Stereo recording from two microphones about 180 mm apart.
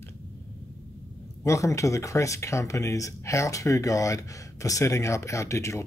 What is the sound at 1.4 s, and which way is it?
Speech, 15° left (ahead or behind).